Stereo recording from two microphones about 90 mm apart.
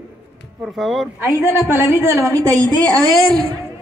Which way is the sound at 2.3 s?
45° right (ahead or behind).